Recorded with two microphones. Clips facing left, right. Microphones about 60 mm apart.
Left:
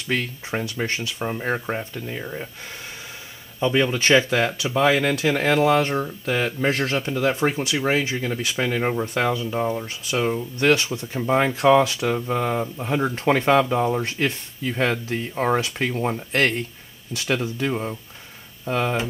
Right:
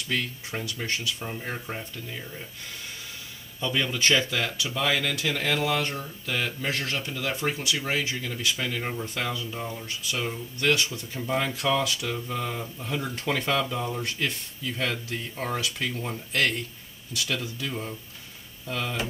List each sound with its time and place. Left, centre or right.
0.1 s speech: left
3.5 s speech: left